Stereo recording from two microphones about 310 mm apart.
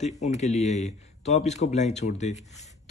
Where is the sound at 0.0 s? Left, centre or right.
Left.